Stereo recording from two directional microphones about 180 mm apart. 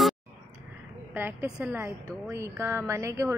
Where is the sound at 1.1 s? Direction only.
10° right (ahead or behind).